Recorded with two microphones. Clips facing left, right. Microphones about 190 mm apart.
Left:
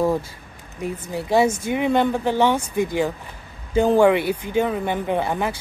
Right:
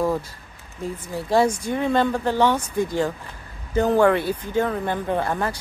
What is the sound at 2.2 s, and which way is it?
Speech, 25° left (ahead or behind).